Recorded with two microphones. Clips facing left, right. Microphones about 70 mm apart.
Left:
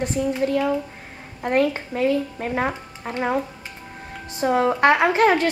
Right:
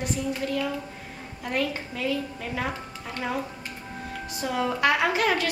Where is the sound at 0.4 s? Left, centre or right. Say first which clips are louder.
Left 7 dB; left.